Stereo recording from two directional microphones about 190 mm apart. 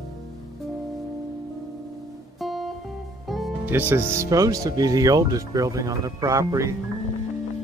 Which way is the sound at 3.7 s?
10° right (ahead or behind).